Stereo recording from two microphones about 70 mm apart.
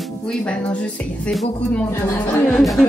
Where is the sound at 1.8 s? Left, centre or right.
Left.